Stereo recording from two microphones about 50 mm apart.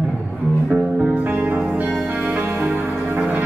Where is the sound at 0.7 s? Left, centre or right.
Right.